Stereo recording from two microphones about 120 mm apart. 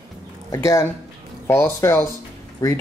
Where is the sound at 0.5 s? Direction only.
25° left (ahead or behind).